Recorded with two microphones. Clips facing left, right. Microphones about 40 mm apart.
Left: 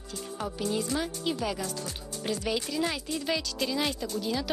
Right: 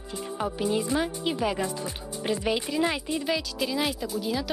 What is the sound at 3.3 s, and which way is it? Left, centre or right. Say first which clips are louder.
Speech: right 1 dB; centre.